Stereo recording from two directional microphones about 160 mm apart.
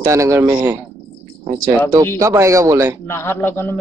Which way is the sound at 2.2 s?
20° right (ahead or behind).